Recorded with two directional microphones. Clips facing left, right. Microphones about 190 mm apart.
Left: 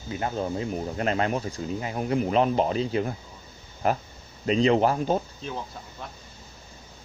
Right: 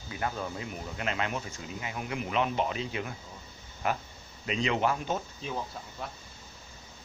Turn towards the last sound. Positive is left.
turn(degrees=-5)  # may be behind; listen again after turning